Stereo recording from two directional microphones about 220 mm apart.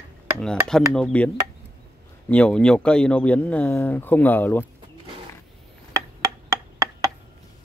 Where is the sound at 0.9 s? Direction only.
5° left (ahead or behind).